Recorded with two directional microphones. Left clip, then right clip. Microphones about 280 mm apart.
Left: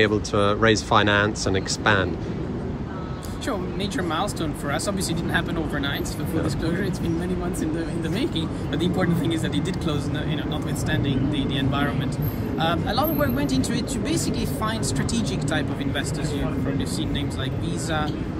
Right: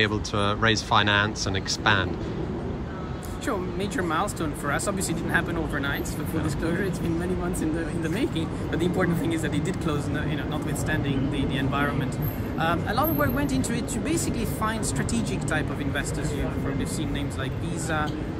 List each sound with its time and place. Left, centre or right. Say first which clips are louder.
0.0 s speech: left 4 dB; centre
4.1 s speech: left 1 dB; centre
8.2 s speech: left 2 dB; centre
10.9 s speech: left 3 dB; centre